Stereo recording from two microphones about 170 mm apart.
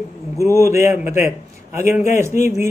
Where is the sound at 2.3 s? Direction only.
45° left (ahead or behind).